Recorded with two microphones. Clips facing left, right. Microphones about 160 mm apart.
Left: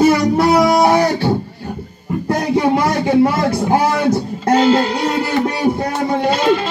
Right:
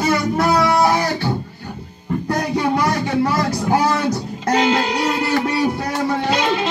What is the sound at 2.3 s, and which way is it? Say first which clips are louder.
Speech: left 5 dB; 25° left (ahead or behind).